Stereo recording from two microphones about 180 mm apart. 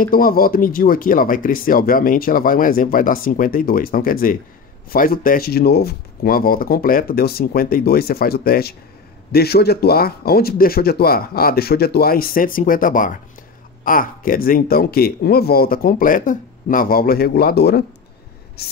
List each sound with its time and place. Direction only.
0.0 s speech: 55° left (ahead or behind)